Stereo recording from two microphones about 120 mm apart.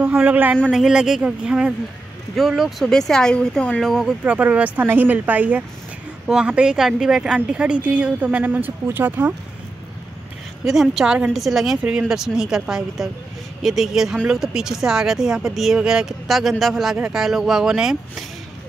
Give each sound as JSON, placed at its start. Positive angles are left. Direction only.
{"t": 0.0, "sound": "a woman's voice", "side_deg": -10}
{"t": 4.2, "sound": "a woman's voice", "side_deg": -10}
{"t": 10.6, "sound": "speech", "side_deg": 0}